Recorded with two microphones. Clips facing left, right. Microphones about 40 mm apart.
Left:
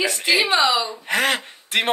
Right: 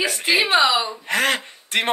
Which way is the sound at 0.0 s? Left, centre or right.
Centre.